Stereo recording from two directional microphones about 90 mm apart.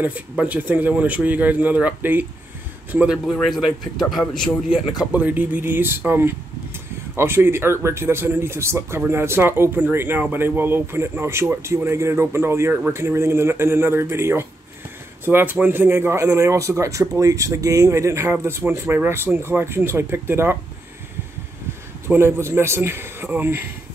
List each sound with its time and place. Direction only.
0.0 s speech: 15° right (ahead or behind)
3.4 s speech: centre (ahead or behind)
5.1 s speech: 20° right (ahead or behind)
22.0 s speech: 30° right (ahead or behind)